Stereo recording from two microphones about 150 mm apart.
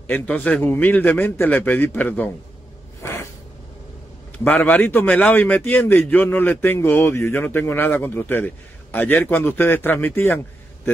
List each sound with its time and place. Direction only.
0.0 s a man's voice: 10° left (ahead or behind)
3.0 s a sound: 20° left (ahead or behind)
4.5 s a man's voice: 10° left (ahead or behind)